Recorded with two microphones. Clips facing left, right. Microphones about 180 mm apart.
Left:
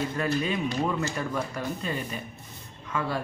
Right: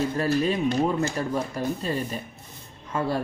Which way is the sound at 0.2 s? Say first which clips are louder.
Right 4 dB; 35° right (ahead or behind).